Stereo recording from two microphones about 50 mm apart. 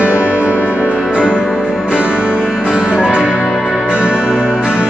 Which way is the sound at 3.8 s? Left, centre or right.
Right.